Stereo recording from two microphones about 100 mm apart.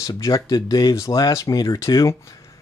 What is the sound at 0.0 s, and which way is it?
Speech, 40° left (ahead or behind).